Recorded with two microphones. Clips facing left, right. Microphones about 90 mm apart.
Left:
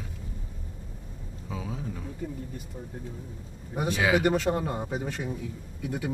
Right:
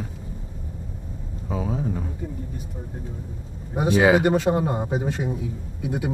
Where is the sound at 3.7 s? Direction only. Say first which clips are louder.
Right 7 dB; 20° right (ahead or behind).